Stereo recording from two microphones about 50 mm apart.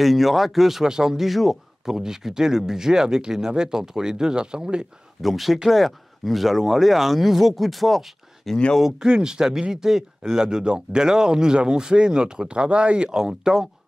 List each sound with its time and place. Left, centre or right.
0.0 s speech: centre
5.2 s speech: centre
8.8 s speech: centre